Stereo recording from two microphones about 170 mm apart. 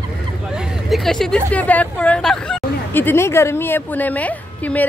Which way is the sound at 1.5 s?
10° left (ahead or behind).